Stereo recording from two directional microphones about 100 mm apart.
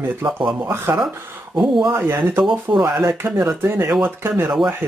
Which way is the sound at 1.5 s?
5° right (ahead or behind).